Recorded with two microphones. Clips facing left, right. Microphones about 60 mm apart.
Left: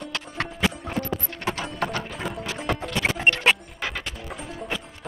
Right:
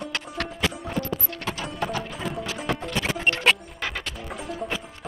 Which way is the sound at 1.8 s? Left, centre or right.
Left.